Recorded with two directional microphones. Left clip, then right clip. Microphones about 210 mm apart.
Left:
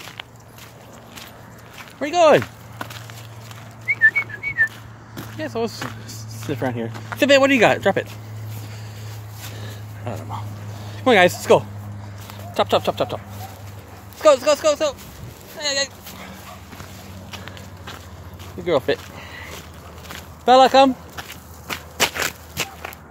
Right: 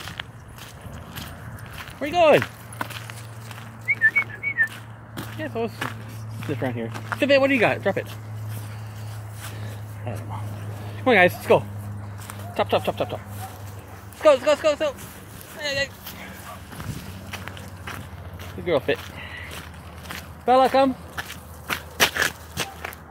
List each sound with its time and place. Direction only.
2.0 s speech: 25° left (ahead or behind)
3.9 s whistling: 30° left (ahead or behind)
5.4 s speech: 30° left (ahead or behind)
11.1 s speech: 30° left (ahead or behind)
14.2 s speech: 15° left (ahead or behind)
15.6 s dog: 25° left (ahead or behind)
17.3 s walk: 15° right (ahead or behind)
18.7 s a sound: 25° left (ahead or behind)
20.4 s speech: 30° left (ahead or behind)
21.3 s walk: centre (ahead or behind)